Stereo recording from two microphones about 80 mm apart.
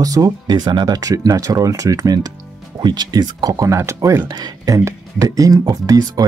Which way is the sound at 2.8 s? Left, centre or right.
Right.